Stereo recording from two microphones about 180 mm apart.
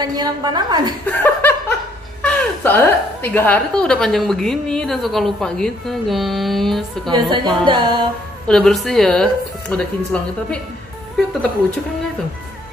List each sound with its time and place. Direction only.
0.0 s a woman's voice: 20° right (ahead or behind)
1.0 s a woman's voice: 10° left (ahead or behind)
7.1 s a woman's voice: 25° right (ahead or behind)
8.5 s a woman's voice: 5° left (ahead or behind)